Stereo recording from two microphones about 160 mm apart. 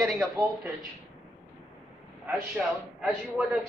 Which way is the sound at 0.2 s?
15° right (ahead or behind).